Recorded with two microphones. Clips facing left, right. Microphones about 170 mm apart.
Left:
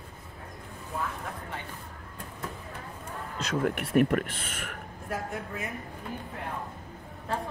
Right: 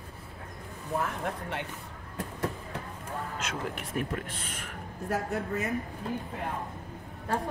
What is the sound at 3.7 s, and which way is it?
Speech, 70° left (ahead or behind).